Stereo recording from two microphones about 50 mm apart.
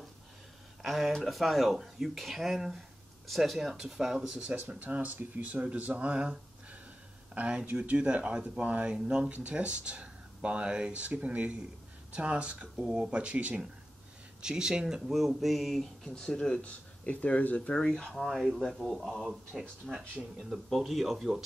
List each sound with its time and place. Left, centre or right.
0.8 s speech: centre
4.5 s speech: right
14.4 s speech: centre; by 17.7 s left
17.7 s speech: centre
18.2 s speech: centre
19.9 s speech: centre
20.4 s speech: centre